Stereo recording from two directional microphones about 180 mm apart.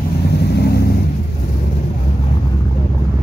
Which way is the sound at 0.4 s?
65° left (ahead or behind).